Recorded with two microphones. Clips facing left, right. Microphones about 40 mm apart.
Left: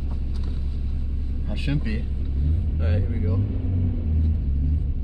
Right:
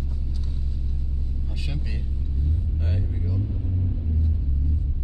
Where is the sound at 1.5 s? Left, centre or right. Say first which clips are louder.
Left 10 dB; left.